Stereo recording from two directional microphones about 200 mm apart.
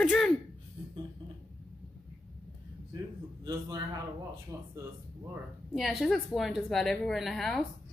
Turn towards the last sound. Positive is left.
turn(degrees=0)  # may be behind; listen again after turning